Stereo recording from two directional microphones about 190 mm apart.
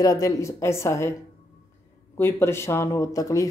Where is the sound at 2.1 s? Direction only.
10° left (ahead or behind).